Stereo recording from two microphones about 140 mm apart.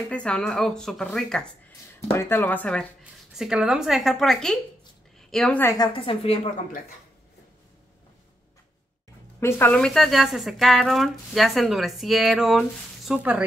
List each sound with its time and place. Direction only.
0.1 s speech: 10° left (ahead or behind)
2.1 s speech: 15° left (ahead or behind)
3.0 s a woman's voice: 5° right (ahead or behind)
5.8 s a woman's voice: 40° left (ahead or behind)
9.4 s speech: 15° left (ahead or behind); by 13.4 s 10° right (ahead or behind)